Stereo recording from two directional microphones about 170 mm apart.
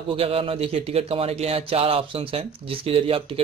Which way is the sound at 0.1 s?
35° right (ahead or behind).